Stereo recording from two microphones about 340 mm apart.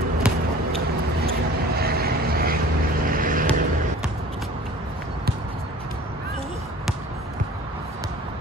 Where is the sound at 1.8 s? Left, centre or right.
Right.